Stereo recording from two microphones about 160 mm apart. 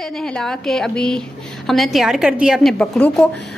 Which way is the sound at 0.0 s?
5° left (ahead or behind).